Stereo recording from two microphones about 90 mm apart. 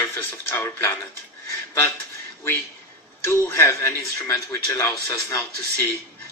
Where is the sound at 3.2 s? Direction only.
30° left (ahead or behind).